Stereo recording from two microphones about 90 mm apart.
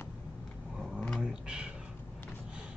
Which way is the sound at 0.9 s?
10° left (ahead or behind).